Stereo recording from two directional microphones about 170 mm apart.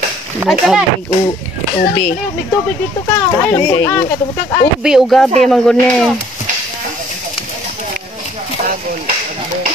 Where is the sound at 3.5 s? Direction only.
15° left (ahead or behind).